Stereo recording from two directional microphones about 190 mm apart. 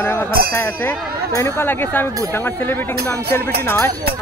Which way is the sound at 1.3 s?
15° left (ahead or behind).